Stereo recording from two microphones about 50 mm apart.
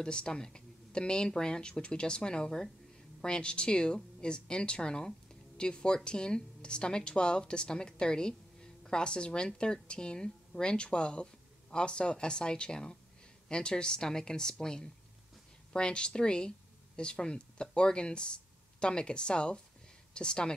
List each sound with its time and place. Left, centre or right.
0.0 s a woman's voice: centre